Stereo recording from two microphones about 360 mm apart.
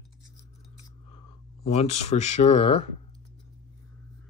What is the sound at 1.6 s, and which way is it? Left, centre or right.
Speech, centre.